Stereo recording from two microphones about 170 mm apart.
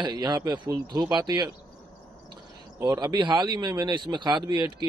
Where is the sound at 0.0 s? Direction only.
25° right (ahead or behind).